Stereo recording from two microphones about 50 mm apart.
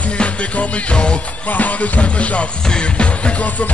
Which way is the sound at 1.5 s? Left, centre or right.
Left.